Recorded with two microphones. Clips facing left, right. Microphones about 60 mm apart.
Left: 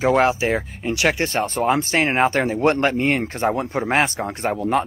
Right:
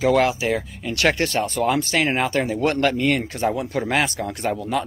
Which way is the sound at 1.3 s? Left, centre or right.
Left.